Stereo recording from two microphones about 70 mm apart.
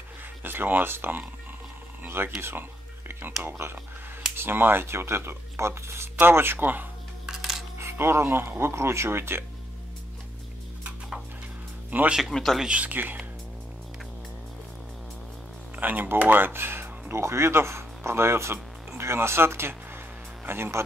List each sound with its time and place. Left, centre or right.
0.4 s speech: right
3.1 s a sound: right
3.4 s speech: right
7.2 s music: centre
7.8 s speech: right
12.1 s speech: centre
12.6 s speech: right
15.7 s speech: right